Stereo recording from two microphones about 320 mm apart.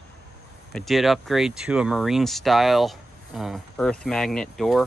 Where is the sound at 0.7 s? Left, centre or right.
Centre.